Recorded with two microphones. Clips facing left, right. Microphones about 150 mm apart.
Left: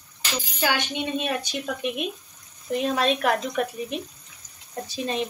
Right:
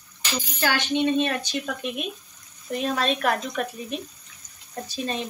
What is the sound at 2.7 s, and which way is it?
Speech, 20° left (ahead or behind).